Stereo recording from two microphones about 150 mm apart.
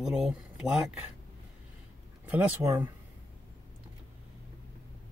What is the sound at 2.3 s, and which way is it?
Speech, 15° right (ahead or behind).